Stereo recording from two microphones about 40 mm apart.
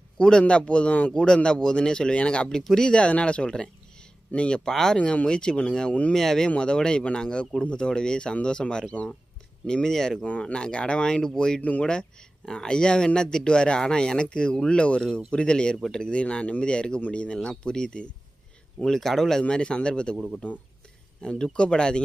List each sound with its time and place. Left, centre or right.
0.4 s speech: left
2.5 s speech: centre
4.6 s speech: centre
4.9 s speech: left
6.5 s speech: left
10.4 s speech: left; by 19.4 s centre
19.4 s speech: left
21.2 s speech: left